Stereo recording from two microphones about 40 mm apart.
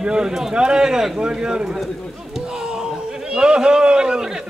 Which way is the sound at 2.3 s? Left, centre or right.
Centre.